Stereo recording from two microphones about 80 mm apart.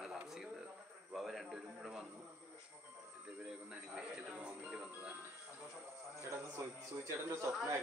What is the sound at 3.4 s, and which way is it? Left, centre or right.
Speech, centre.